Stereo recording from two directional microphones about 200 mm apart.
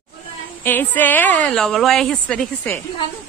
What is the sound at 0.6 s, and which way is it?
A woman's voice, 10° left (ahead or behind).